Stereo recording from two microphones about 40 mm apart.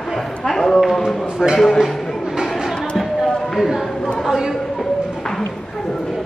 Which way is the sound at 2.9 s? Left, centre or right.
Centre.